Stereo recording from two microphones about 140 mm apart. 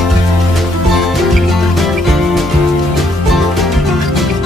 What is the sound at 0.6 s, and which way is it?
Music, centre (ahead or behind).